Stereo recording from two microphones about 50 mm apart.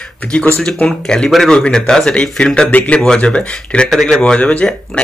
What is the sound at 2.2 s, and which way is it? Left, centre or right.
Speech, centre.